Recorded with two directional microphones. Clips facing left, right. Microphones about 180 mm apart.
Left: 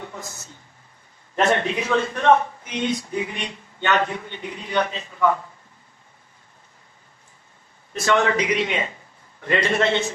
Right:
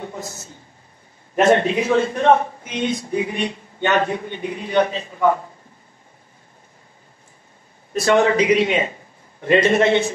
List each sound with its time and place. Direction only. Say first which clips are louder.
0.0 s a sound: right 4 dB; 20° right (ahead or behind)
1.3 s a man's voice: right 5 dB; 15° right (ahead or behind)
7.9 s a man's voice: right 4 dB; 35° right (ahead or behind)
8.2 s a man's voice: right 6 dB; 20° right (ahead or behind)